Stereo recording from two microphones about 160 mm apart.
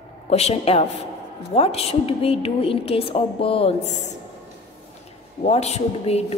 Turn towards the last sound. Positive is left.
turn(degrees=40)  # may be behind; listen again after turning